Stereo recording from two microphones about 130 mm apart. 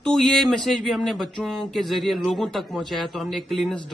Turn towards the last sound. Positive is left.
turn(degrees=0)  # may be behind; listen again after turning